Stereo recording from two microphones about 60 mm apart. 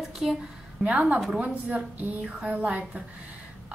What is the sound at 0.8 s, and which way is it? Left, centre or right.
A woman's voice, centre.